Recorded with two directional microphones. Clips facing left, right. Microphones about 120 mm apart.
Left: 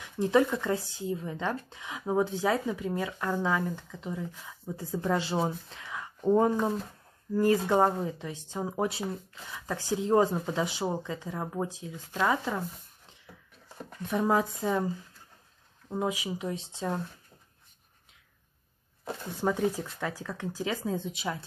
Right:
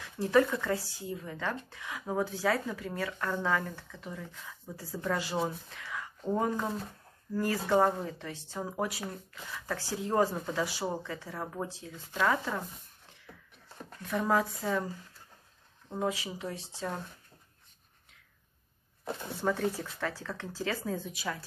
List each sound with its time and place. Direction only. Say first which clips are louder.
0.0 s speech: left 1 dB; 20° left (ahead or behind)
14.0 s speech: left 2 dB; 20° left (ahead or behind)
15.9 s speech: left 2 dB; 15° left (ahead or behind)
19.4 s speech: left 3 dB; 15° left (ahead or behind)